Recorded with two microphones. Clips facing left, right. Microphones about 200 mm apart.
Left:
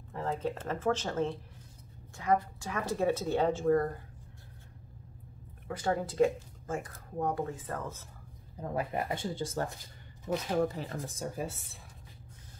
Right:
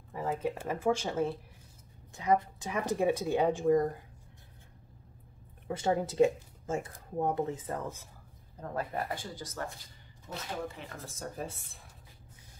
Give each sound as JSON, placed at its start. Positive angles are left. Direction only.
{"t": 0.1, "sound": "a woman's voice", "side_deg": -10}
{"t": 5.7, "sound": "speech", "side_deg": -25}
{"t": 8.5, "sound": "speech", "side_deg": 15}
{"t": 10.7, "sound": "speech", "side_deg": 35}
{"t": 11.0, "sound": "speech", "side_deg": 15}